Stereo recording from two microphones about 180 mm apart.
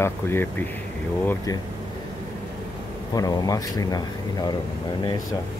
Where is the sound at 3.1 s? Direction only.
20° left (ahead or behind).